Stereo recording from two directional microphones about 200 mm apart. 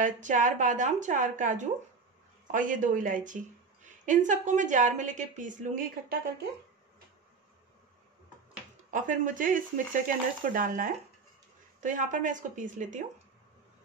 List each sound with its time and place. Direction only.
0.0 s speech: 40° right (ahead or behind)
8.9 s speech: 40° right (ahead or behind)